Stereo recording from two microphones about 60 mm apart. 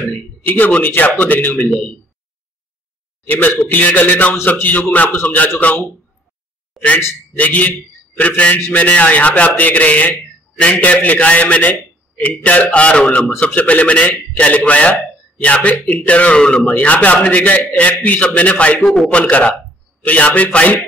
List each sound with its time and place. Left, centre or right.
0.1 s a man's voice: left
3.3 s a man's voice: left
6.8 s a sound: centre
7.3 s a man's voice: left
16.6 s a man's voice: left